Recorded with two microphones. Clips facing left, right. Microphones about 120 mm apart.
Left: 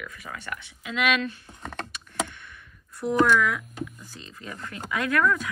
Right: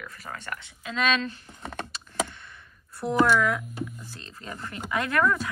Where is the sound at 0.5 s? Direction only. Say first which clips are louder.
Left 3 dB; 30° right (ahead or behind).